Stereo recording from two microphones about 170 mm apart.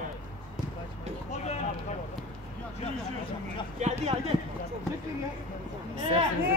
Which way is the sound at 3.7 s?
40° right (ahead or behind).